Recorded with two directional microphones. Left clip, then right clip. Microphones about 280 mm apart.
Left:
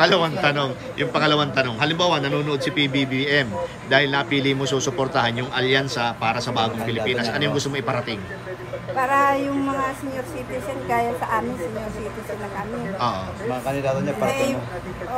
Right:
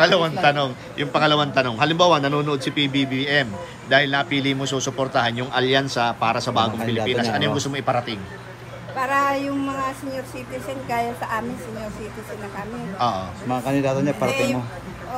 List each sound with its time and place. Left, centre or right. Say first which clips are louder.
0.0 s a man's voice: right 1 dB; centre
10.9 s a man's voice: left 3 dB; centre
13.0 s a man's voice: right 2 dB; centre
13.5 s a man's voice: right 2 dB; right